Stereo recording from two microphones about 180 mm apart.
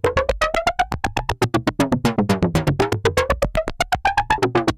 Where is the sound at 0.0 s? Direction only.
Centre (ahead or behind).